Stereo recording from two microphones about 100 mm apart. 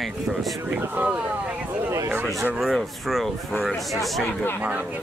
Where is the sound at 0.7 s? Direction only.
15° right (ahead or behind).